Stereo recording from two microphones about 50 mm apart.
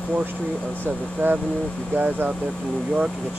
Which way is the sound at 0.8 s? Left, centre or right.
Right.